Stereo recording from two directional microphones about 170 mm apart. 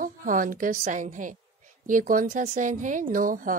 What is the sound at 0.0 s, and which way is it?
A woman's voice, 50° right (ahead or behind).